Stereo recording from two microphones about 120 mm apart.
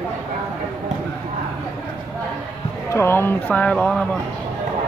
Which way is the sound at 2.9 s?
20° left (ahead or behind).